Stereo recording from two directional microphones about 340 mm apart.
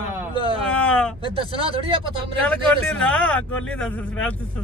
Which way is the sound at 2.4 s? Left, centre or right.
Centre.